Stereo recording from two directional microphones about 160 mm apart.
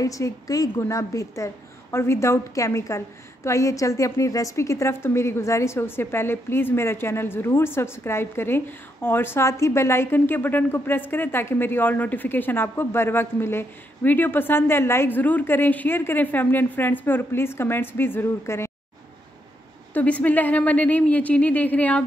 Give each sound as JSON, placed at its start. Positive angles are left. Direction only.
{"t": 0.0, "sound": "a woman's voice", "side_deg": 20}
{"t": 19.9, "sound": "a woman's voice", "side_deg": 10}